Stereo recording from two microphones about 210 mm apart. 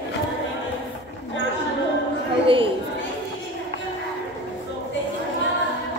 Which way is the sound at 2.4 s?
25° right (ahead or behind).